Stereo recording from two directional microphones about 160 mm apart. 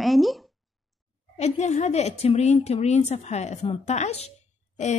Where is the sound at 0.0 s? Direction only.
Centre (ahead or behind).